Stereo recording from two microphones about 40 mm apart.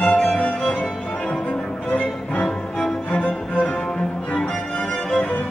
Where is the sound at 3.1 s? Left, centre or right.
Left.